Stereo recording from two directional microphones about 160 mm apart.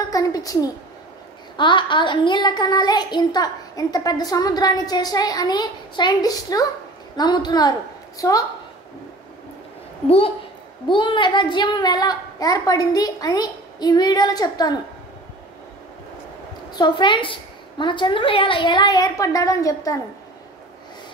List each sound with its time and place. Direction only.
0.1 s a child's voice: 20° left (ahead or behind)
10.0 s a woman's voice: 35° left (ahead or behind)
16.7 s a child's voice: 30° left (ahead or behind)